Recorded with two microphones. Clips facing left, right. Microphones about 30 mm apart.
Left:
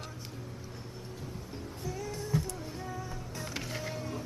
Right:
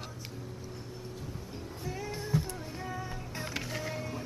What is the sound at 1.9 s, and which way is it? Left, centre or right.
Music, right.